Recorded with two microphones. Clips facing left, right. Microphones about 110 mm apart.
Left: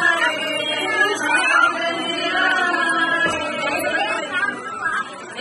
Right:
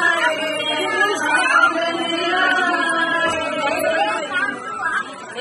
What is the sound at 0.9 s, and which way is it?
Music, 15° right (ahead or behind).